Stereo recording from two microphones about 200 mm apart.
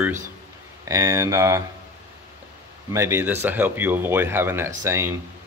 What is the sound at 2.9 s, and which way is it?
Speech, 10° right (ahead or behind).